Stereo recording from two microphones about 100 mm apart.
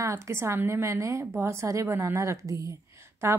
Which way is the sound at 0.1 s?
25° right (ahead or behind).